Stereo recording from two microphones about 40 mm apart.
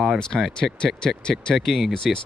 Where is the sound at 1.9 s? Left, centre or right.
Centre.